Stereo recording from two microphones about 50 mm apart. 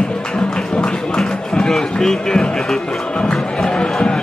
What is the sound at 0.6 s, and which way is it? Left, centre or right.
Run, centre.